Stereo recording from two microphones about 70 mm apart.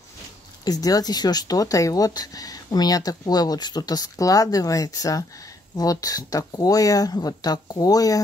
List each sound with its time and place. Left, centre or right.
0.7 s speech: left